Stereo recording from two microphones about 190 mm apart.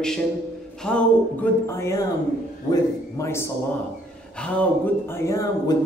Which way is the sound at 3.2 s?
15° left (ahead or behind).